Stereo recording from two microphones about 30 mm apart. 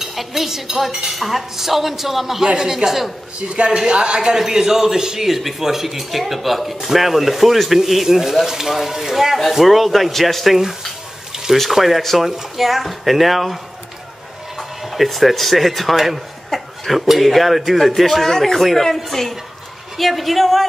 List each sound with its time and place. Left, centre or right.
0.0 s speech: centre
2.4 s speech: right
2.7 s speech: centre
3.3 s a man's voice: right
3.7 s speech: right
4.4 s a man's voice: centre
14.6 s a sound: centre
15.0 s a man's voice: centre
18.2 s a man's voice: centre